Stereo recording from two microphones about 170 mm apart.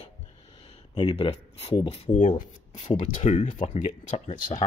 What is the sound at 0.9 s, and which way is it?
Speech, 30° left (ahead or behind).